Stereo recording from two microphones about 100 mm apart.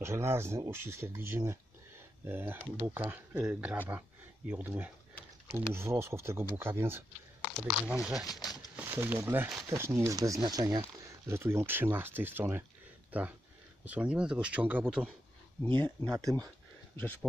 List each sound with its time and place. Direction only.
0.0 s speech: 25° right (ahead or behind)
7.8 s speech: 10° right (ahead or behind)
8.3 s a sound: 40° left (ahead or behind)
8.8 s speech: 20° right (ahead or behind); by 10.9 s 40° right (ahead or behind)
11.2 s speech: 25° right (ahead or behind)
15.6 s speech: 20° left (ahead or behind)
16.1 s speech: 35° right (ahead or behind)
16.9 s speech: 20° left (ahead or behind)